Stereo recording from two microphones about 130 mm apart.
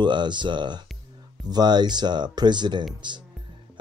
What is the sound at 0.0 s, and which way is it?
Speech, 35° right (ahead or behind).